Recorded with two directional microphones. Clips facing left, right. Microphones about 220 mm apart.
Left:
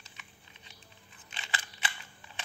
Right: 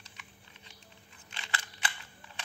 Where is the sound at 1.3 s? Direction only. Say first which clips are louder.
Even; 25° left (ahead or behind).